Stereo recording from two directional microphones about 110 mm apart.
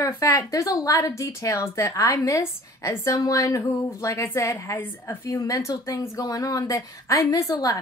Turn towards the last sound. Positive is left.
turn(degrees=35)  # may be behind; listen again after turning